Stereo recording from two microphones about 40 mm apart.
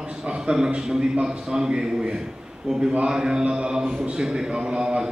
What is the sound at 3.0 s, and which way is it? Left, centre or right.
A man's voice, centre.